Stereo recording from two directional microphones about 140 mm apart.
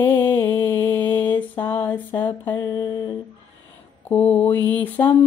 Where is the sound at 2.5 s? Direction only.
25° left (ahead or behind).